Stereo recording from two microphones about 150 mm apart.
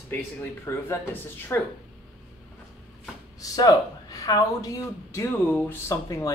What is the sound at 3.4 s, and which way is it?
Speech, 25° left (ahead or behind).